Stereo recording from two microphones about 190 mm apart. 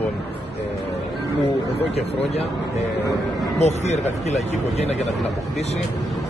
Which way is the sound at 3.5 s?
35° left (ahead or behind).